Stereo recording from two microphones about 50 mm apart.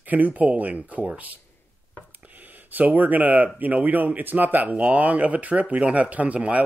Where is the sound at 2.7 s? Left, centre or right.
Right.